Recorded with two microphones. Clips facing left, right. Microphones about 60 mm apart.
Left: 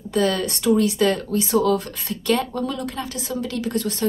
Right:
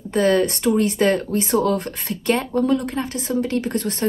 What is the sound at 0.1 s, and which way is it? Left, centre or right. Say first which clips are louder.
Speech: right 4 dB; right.